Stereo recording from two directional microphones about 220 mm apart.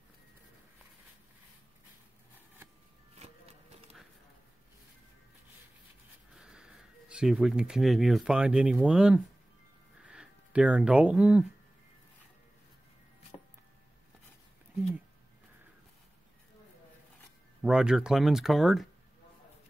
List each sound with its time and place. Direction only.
3.2 s a sound: 30° right (ahead or behind)
6.3 s speech: 5° right (ahead or behind)
17.6 s speech: 5° right (ahead or behind)